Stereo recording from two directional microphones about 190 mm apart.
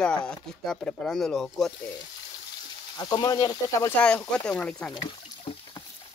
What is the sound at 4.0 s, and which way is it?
Speech, 5° left (ahead or behind).